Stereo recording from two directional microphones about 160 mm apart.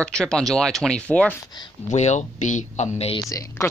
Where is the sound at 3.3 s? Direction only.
20° left (ahead or behind).